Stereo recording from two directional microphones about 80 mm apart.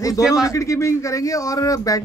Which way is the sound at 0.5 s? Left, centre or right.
Left.